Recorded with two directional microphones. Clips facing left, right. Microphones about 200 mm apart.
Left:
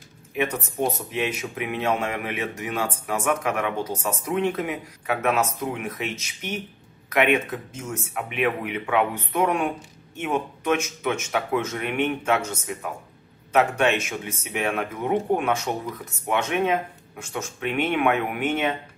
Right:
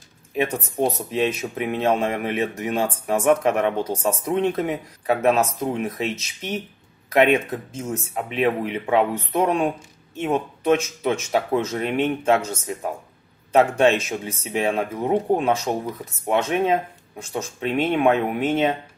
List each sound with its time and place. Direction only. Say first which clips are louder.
1.1 s speech: right 5 dB; 30° right (ahead or behind)
7.7 s speech: right 4 dB; 30° right (ahead or behind)